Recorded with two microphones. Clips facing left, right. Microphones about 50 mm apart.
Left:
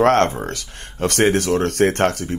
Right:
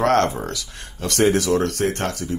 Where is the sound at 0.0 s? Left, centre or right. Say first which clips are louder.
Left 3 dB; left.